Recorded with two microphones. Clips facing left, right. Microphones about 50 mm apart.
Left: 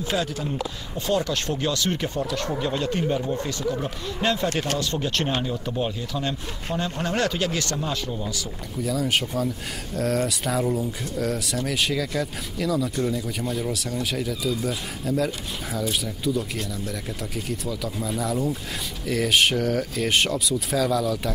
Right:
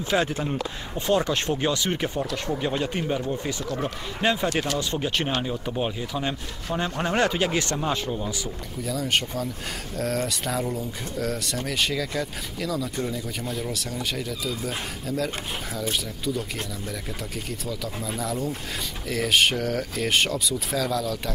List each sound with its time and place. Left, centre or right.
0.0 s speech: right
8.8 s speech: centre
17.5 s speech: centre